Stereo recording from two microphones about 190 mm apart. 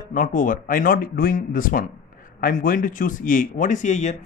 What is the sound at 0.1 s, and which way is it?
Speech, 45° left (ahead or behind).